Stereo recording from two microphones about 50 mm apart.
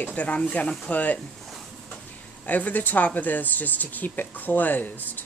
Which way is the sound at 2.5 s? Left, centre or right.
Left.